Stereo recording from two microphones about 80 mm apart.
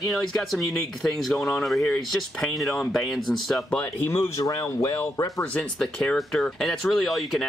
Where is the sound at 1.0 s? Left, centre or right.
Centre.